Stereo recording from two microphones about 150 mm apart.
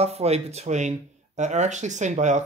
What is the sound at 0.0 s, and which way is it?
Speech, 45° right (ahead or behind).